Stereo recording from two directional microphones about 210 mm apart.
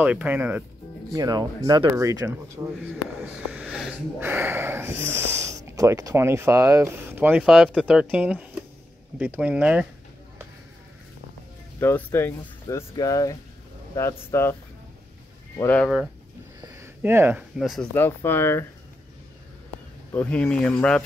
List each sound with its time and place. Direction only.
0.0 s speech: 10° right (ahead or behind)
3.5 s speech: 5° right (ahead or behind)
11.8 s speech: 10° left (ahead or behind)
16.6 s speech: 15° right (ahead or behind); by 18.7 s 10° left (ahead or behind)
20.1 s speech: 5° left (ahead or behind)